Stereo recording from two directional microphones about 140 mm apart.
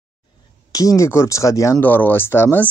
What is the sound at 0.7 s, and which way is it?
Speech, 25° left (ahead or behind).